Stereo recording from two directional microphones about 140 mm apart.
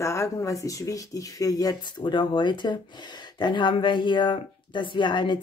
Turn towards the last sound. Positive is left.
turn(degrees=35)  # may be behind; listen again after turning